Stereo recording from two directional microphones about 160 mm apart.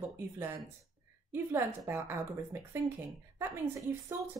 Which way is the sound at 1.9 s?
15° right (ahead or behind).